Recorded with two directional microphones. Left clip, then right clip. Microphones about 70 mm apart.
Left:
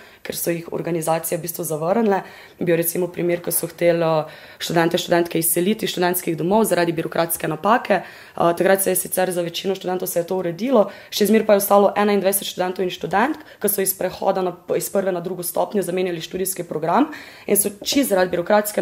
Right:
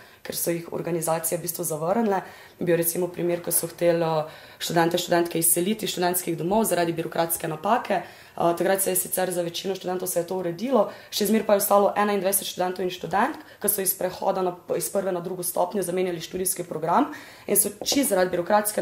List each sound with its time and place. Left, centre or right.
0.7 s speech: left